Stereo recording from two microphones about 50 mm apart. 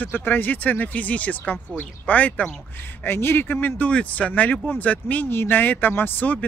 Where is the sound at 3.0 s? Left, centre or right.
Left.